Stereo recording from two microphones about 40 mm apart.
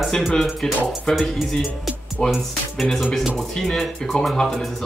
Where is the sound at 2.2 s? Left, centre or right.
Left.